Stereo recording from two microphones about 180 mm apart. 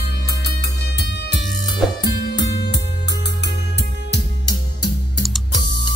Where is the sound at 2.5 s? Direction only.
75° left (ahead or behind).